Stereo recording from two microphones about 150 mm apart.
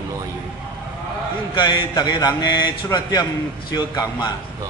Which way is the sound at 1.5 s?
30° left (ahead or behind).